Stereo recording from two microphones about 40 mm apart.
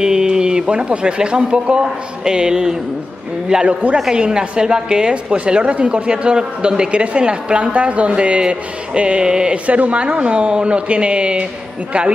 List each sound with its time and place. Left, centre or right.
0.0 s a woman's voice: centre
3.6 s a man's voice: right
4.1 s a woman's voice: right
9.7 s a woman's voice: right